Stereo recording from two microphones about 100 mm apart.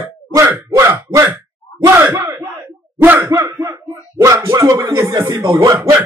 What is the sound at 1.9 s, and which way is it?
Speech, 25° right (ahead or behind).